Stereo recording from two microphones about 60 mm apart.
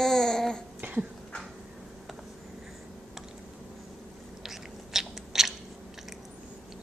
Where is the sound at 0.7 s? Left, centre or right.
Right.